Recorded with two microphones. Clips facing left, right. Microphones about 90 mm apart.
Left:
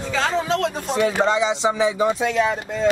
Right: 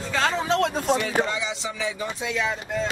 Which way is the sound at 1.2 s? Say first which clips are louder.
Left 10 dB; 90° left.